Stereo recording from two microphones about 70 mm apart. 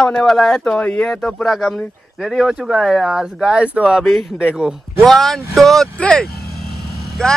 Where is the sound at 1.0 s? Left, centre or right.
Centre.